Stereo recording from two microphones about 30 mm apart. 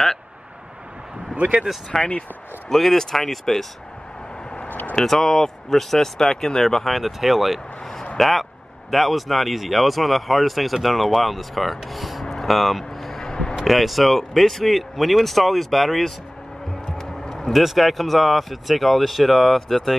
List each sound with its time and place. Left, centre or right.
1.3 s speech: right
1.9 s speech: centre
4.6 s a sound: left
5.0 s speech: centre
7.0 s speech: centre
12.3 s vehicle: centre
13.2 s a sound: left
13.7 s speech: centre
17.5 s speech: centre